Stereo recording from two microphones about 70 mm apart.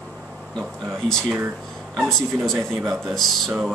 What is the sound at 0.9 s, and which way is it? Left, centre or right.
Speech, centre.